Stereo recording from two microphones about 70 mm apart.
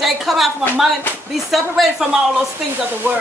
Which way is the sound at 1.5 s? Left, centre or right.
Centre.